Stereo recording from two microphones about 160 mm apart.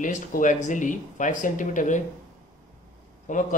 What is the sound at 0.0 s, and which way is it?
Speech, 55° left (ahead or behind).